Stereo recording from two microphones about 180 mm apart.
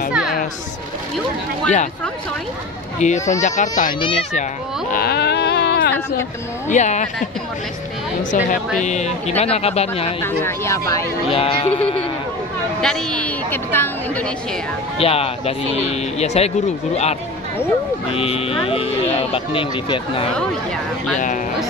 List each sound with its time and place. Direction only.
0.1 s music: 5° right (ahead or behind)
3.0 s speech: 40° left (ahead or behind)
4.9 s a sound: 60° left (ahead or behind)
6.7 s a woman's voice: 40° left (ahead or behind)
8.2 s a woman's voice: 45° left (ahead or behind)
10.2 s a woman's voice: 15° left (ahead or behind)
11.2 s speech: 30° left (ahead or behind)
12.8 s a woman's voice: 5° left (ahead or behind)
15.0 s speech: 35° left (ahead or behind)